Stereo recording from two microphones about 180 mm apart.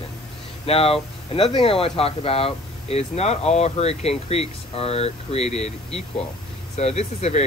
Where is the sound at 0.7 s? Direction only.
30° left (ahead or behind).